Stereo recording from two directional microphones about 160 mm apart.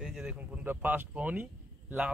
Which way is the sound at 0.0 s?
5° right (ahead or behind).